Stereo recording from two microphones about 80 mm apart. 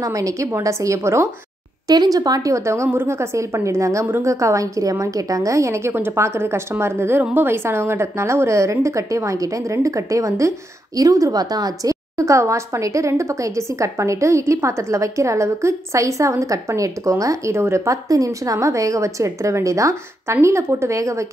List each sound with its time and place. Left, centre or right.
0.0 s a woman's voice: right
1.9 s a woman's voice: right
4.0 s a woman's voice: right
4.3 s a woman's voice: right